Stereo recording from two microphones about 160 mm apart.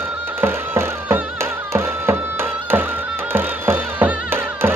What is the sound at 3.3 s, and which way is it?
Music, 15° right (ahead or behind).